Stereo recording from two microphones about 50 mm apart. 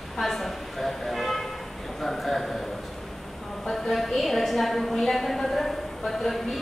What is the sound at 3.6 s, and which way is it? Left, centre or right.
A woman's voice, centre.